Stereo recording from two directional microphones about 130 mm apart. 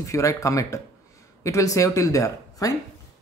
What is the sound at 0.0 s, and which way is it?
Speech, 25° left (ahead or behind).